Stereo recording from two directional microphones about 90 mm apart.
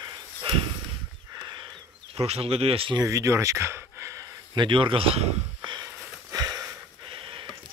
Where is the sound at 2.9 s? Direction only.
35° right (ahead or behind).